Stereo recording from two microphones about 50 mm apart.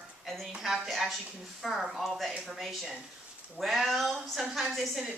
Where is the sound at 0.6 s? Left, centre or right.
Centre.